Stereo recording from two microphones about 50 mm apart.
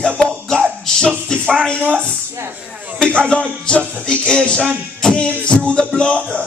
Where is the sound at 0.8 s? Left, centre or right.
Centre.